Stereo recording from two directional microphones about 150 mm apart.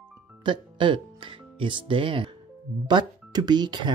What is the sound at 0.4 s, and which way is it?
Speech, 30° right (ahead or behind).